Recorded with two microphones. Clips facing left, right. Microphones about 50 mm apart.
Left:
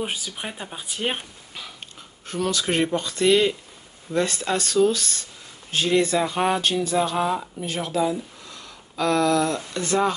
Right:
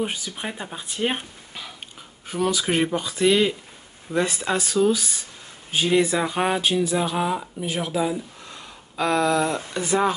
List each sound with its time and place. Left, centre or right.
0.0 s speech: centre
1.0 s a sound: centre
2.2 s speech: centre
8.5 s speech: right